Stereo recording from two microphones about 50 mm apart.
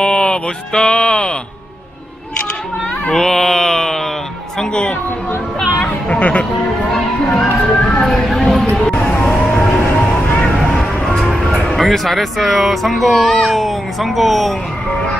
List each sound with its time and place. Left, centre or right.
0.0 s speech: centre
3.1 s music: centre
4.6 s music: left
6.0 s a sound: left
6.9 s music: centre
8.0 s speech: centre
8.4 s a sound: centre
9.1 s vehicle: left
9.5 s music: centre
11.5 s speech: centre